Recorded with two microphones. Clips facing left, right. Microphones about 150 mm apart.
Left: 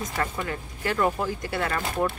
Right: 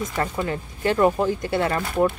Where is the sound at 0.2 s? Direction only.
30° right (ahead or behind).